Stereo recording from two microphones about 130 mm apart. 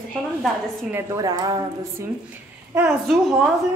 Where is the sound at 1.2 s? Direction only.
30° right (ahead or behind).